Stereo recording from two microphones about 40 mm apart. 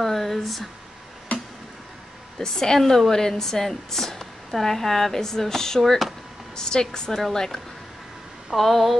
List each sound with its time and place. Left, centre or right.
0.0 s speech: centre
1.3 s a sound: left
2.3 s speech: centre
8.5 s speech: centre